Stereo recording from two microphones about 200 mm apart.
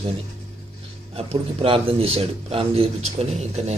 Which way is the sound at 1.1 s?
25° right (ahead or behind).